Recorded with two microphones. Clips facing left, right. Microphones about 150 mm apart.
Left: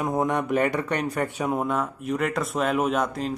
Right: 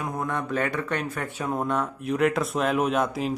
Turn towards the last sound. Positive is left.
turn(degrees=-5)  # may be behind; listen again after turning